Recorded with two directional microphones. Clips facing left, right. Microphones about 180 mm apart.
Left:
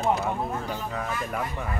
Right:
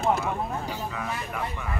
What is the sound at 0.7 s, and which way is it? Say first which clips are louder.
Speech: left 1 dB; 40° left (ahead or behind).